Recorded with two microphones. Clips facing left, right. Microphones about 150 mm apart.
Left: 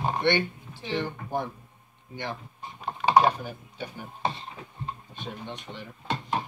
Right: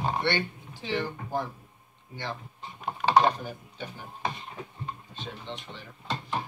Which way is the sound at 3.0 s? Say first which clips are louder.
Left 1 dB; 10° left (ahead or behind).